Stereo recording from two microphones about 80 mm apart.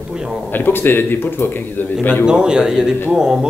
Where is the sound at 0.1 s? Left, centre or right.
Centre.